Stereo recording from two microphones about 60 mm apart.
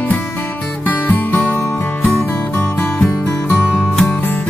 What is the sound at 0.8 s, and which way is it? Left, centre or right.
Music, left.